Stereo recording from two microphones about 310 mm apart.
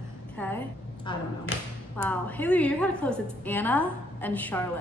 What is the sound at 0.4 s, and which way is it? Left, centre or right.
A woman's voice, centre.